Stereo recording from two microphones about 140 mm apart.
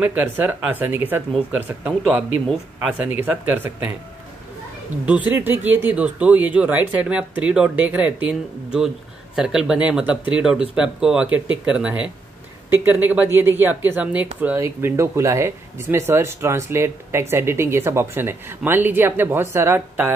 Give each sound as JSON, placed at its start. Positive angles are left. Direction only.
{"t": 0.0, "sound": "speech", "side_deg": -15}
{"t": 5.0, "sound": "speech", "side_deg": -10}